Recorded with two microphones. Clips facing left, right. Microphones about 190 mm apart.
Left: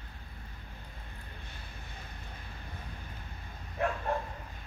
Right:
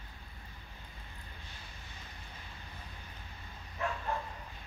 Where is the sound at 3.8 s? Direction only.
60° left (ahead or behind).